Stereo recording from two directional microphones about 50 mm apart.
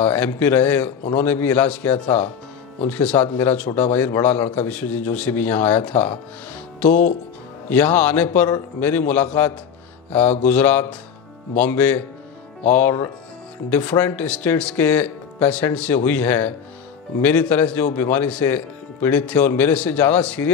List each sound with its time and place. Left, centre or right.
0.0 s a man's voice: left
3.2 s a man's voice: left
3.5 s a man's voice: left